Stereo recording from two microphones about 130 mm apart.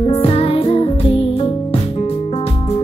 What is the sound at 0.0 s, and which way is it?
Music, 45° left (ahead or behind).